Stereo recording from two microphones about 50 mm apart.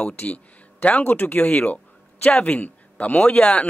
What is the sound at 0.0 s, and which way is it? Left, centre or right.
Speech, left.